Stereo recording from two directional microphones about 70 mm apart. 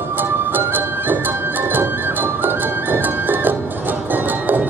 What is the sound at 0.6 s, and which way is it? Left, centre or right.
Music, right.